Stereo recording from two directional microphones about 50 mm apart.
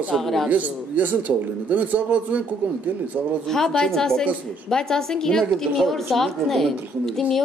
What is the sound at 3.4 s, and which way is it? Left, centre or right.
A woman's voice, centre.